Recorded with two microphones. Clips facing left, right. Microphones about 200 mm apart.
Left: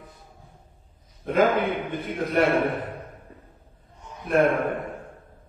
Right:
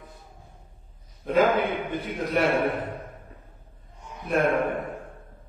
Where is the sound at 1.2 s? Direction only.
50° left (ahead or behind).